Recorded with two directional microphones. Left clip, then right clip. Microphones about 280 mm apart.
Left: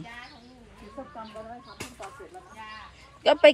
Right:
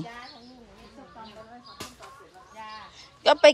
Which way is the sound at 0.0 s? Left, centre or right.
Right.